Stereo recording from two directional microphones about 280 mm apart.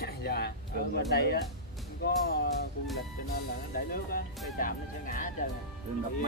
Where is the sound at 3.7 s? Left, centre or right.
Left.